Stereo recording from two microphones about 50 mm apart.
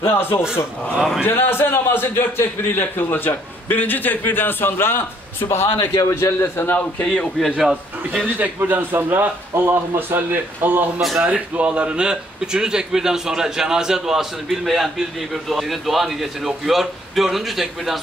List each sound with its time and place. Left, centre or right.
0.0 s a man's voice: left
6.6 s a man's voice: left
7.2 s a man's voice: centre
8.4 s a man's voice: right
11.1 s speech: right; by 17.9 s centre